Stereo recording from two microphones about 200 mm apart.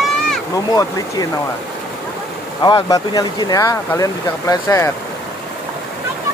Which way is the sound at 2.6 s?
20° left (ahead or behind).